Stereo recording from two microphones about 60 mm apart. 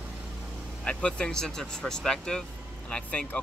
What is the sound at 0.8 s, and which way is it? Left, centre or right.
Speech, centre.